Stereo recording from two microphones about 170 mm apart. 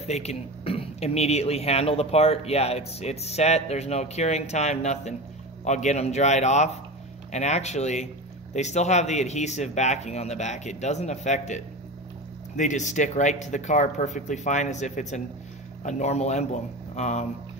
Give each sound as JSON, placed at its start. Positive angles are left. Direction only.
{"t": 0.0, "sound": "speech", "side_deg": 40}